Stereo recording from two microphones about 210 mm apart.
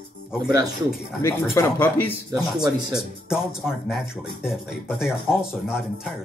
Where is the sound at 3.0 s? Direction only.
5° right (ahead or behind).